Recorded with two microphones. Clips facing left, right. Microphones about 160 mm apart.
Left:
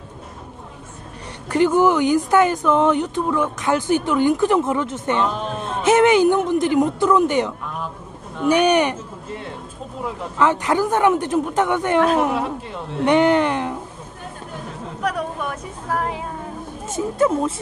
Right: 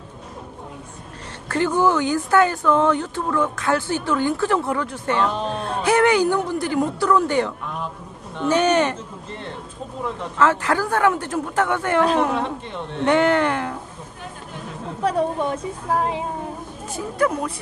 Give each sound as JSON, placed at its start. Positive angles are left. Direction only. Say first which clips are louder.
{"t": 1.5, "sound": "speech", "louder": "left 3 dB", "side_deg": 15}
{"t": 12.4, "sound": "speech", "louder": "left 1 dB", "side_deg": 5}
{"t": 13.0, "sound": "speech", "louder": "left 2 dB", "side_deg": 15}
{"t": 15.0, "sound": "a sound", "louder": "right 4 dB", "side_deg": -25}
{"t": 16.8, "sound": "speech", "louder": "left 3 dB", "side_deg": 20}